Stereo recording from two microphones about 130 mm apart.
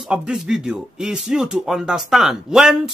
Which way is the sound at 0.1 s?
5° right (ahead or behind).